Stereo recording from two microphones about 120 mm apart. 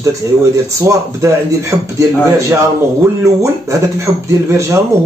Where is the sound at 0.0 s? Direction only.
25° right (ahead or behind).